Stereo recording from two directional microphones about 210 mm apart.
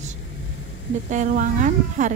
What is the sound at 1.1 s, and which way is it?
A woman's voice, 35° right (ahead or behind).